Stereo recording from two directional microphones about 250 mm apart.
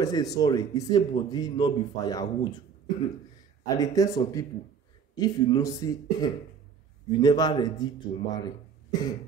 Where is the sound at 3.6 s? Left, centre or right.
Centre.